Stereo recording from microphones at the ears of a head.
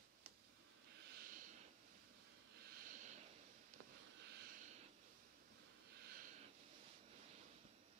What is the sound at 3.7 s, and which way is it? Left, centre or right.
Sniff, right.